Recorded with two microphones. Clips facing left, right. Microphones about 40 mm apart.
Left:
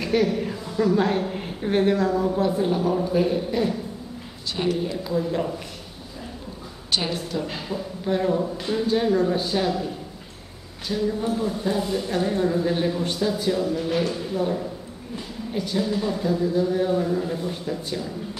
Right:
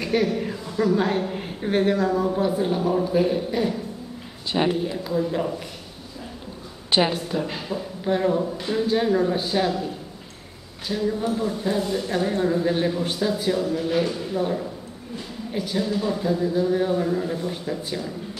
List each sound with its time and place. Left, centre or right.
0.0 s a woman's voice: centre
4.5 s a man's voice: right
4.8 s a woman's voice: centre
6.9 s a woman's voice: right
7.4 s a woman's voice: centre
10.9 s a woman's voice: centre